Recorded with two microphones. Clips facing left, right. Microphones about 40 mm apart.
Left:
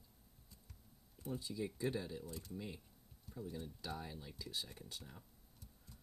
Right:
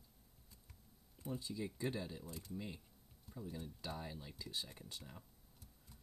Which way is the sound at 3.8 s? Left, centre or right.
Centre.